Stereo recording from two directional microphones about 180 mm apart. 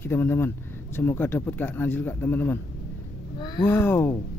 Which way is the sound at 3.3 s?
25° left (ahead or behind).